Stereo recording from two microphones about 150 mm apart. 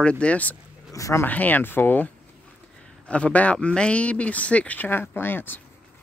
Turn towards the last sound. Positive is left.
turn(degrees=15)  # may be behind; listen again after turning